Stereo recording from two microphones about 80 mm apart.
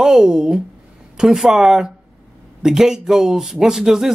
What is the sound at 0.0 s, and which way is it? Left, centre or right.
Speech, centre.